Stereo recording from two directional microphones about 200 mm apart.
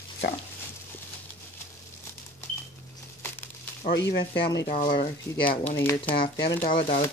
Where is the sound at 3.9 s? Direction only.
65° left (ahead or behind).